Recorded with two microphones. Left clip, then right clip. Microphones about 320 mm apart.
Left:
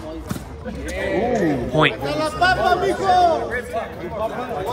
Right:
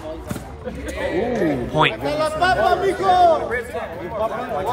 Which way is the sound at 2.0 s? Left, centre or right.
Right.